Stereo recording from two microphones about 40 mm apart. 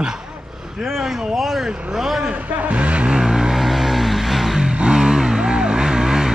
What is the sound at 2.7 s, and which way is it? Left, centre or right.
Speech, right.